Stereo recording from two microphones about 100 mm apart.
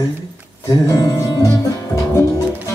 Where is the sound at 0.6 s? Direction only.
35° left (ahead or behind).